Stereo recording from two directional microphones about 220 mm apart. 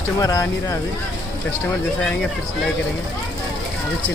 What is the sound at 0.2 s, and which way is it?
Speech, 15° left (ahead or behind).